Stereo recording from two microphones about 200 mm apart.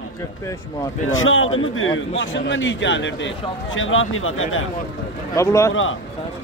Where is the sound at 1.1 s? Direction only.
80° left; by 3.3 s 65° left (ahead or behind).